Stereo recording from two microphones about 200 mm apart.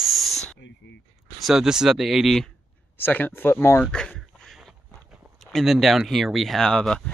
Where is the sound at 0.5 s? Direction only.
60° left (ahead or behind).